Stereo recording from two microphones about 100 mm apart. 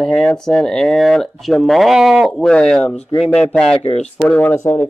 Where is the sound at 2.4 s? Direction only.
10° left (ahead or behind).